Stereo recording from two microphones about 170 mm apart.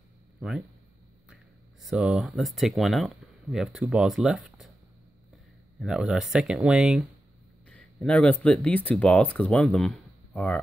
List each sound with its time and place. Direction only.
0.4 s speech: 5° right (ahead or behind)
5.8 s speech: 5° right (ahead or behind)